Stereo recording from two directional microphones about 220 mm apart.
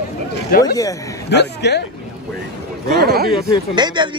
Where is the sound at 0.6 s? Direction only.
15° left (ahead or behind).